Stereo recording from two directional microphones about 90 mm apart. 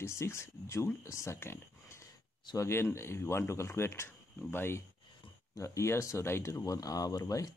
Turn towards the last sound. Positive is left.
turn(degrees=40)  # may be behind; listen again after turning